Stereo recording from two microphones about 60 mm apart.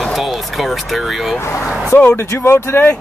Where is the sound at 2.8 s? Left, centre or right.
Left.